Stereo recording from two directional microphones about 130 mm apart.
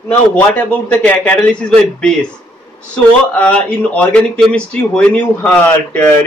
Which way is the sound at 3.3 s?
10° left (ahead or behind).